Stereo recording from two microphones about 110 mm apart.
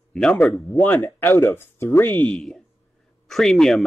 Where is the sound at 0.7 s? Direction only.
20° left (ahead or behind).